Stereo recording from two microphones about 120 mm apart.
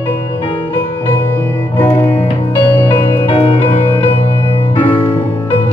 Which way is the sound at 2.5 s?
15° left (ahead or behind).